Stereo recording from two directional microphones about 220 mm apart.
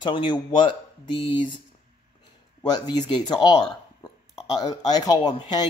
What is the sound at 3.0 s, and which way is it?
Speech, 20° left (ahead or behind).